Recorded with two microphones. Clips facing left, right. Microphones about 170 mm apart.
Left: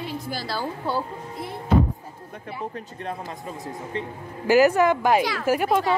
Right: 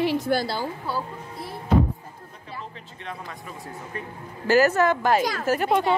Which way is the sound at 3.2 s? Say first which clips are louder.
Left 4 dB; 25° left (ahead or behind).